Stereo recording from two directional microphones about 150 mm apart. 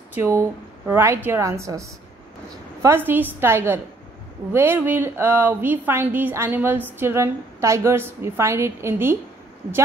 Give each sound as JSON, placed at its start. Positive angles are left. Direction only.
{"t": 0.1, "sound": "speech", "side_deg": -15}